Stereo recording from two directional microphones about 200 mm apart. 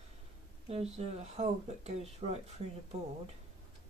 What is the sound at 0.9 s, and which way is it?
Speech, 30° right (ahead or behind).